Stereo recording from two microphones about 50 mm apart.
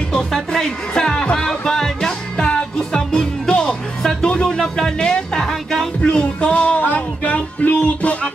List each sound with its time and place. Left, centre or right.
0.3 s music: centre
4.0 s music: centre
6.1 s music: left